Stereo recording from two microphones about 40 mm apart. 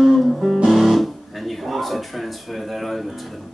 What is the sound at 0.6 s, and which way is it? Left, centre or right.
Guitar, centre.